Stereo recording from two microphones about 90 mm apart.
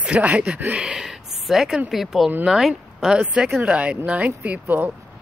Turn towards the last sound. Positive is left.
turn(degrees=-20)  # may be behind; listen again after turning